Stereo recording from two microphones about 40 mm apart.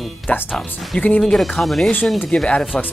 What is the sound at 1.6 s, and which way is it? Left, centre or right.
Speech, centre.